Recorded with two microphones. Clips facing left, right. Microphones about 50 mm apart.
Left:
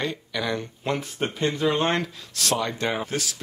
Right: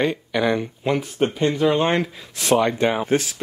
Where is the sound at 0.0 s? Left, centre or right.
Right.